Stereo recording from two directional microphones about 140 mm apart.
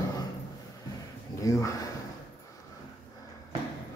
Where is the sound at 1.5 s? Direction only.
20° left (ahead or behind).